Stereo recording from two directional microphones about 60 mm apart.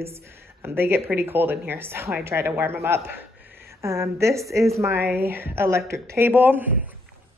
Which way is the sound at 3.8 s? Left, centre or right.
Right.